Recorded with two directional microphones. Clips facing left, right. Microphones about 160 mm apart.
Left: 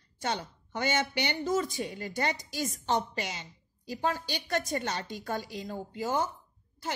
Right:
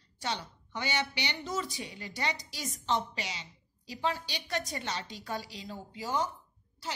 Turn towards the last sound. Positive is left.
turn(degrees=50)  # may be behind; listen again after turning